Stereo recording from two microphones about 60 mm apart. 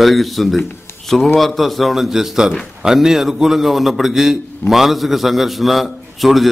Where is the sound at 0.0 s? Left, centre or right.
Centre.